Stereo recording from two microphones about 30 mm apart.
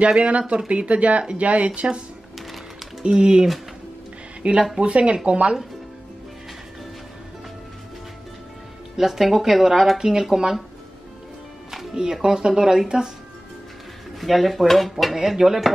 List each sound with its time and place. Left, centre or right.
0.0 s speech: right
1.8 s speech: right
2.3 s music: centre
3.0 s speech: right
4.7 s speech: right
8.9 s speech: centre
9.9 s speech: right
11.9 s speech: right
14.2 s speech: centre
15.1 s speech: centre